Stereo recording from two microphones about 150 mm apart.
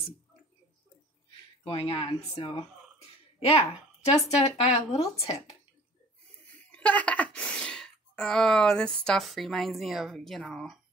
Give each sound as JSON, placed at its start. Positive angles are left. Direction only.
{"t": 1.6, "sound": "speech", "side_deg": 40}
{"t": 6.7, "sound": "speech", "side_deg": 10}